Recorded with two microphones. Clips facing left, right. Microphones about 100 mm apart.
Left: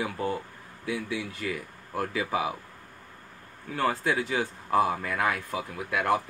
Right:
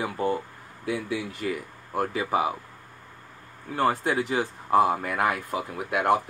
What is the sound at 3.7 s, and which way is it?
Speech, 45° right (ahead or behind).